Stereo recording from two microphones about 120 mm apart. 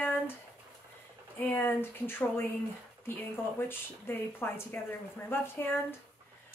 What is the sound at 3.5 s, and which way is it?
A woman's voice, 20° left (ahead or behind).